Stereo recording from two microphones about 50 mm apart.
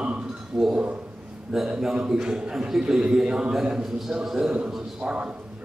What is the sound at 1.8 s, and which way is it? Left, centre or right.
A man's voice, centre.